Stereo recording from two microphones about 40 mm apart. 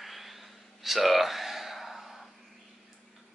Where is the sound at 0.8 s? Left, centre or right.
Centre.